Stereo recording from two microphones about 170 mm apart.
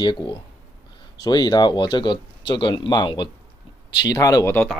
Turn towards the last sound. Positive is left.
turn(degrees=15)  # may be behind; listen again after turning